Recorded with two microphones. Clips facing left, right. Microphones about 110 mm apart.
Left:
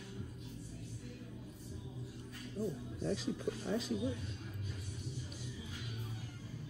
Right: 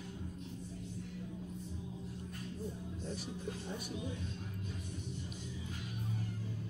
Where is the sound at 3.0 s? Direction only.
90° left.